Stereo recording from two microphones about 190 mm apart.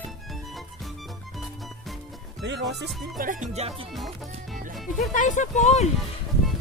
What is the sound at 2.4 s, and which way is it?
Speech, 65° right (ahead or behind).